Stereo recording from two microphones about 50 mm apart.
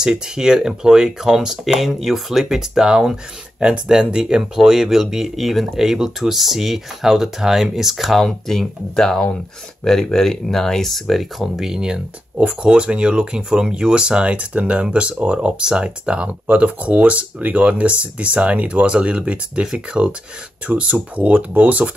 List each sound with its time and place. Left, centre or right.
0.0 s speech: centre
8.2 s speech: centre
12.4 s speech: right